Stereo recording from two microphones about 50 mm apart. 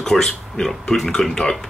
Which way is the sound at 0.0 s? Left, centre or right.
Centre.